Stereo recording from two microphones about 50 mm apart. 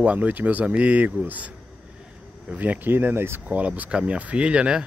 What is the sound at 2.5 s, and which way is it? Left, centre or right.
Speech, right.